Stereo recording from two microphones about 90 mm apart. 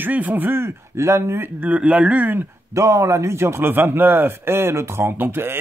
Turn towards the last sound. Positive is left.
turn(degrees=-25)  # may be behind; listen again after turning